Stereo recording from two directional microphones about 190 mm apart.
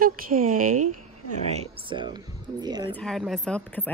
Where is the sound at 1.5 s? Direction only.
30° right (ahead or behind).